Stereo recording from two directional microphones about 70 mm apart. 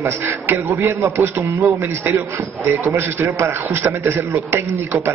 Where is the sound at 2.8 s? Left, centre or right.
Right.